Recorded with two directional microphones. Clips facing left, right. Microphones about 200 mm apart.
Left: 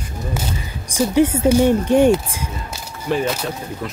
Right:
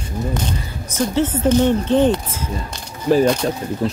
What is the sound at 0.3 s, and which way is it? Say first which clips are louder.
Speech: right 2 dB; 10° left (ahead or behind).